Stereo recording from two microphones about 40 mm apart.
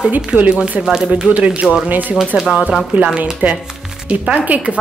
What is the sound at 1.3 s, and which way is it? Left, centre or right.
Speech, right.